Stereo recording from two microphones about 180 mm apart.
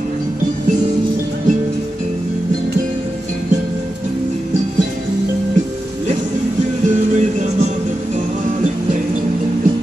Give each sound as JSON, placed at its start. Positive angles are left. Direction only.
{"t": 7.2, "sound": "music", "side_deg": -40}